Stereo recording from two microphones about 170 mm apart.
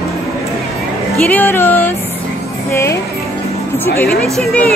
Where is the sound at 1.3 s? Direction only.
10° left (ahead or behind).